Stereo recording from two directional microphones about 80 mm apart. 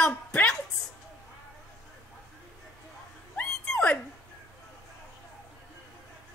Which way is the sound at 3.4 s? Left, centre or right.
Centre.